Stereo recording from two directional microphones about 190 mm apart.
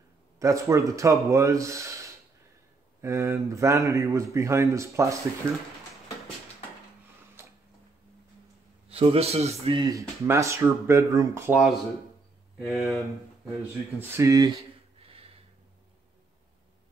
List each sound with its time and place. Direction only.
0.4 s a man's voice: 15° right (ahead or behind)
7.4 s a sound: 15° right (ahead or behind)
8.8 s a man's voice: 30° right (ahead or behind)
9.8 s a man's voice: 15° right (ahead or behind)
12.5 s speech: centre (ahead or behind)
13.9 s a man's voice: 15° right (ahead or behind)